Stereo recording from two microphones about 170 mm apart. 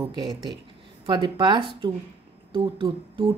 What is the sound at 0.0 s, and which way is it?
A woman's voice, 25° right (ahead or behind).